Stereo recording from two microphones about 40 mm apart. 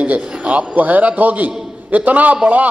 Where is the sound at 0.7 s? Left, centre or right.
Right.